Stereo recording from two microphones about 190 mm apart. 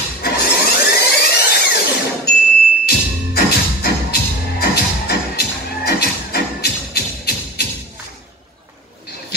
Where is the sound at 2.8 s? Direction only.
55° left (ahead or behind).